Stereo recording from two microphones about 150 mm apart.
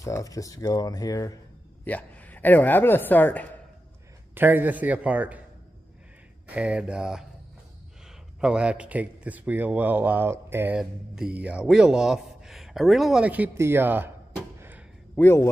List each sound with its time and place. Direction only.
0.0 s speech: 20° left (ahead or behind)
1.9 s a woman's voice: 10° left (ahead or behind)
4.4 s speech: 15° right (ahead or behind)
6.4 s speech: 10° right (ahead or behind)
8.4 s a man's voice: 5° right (ahead or behind)
14.6 s a sound: 10° right (ahead or behind)
15.1 s a woman's voice: 15° left (ahead or behind)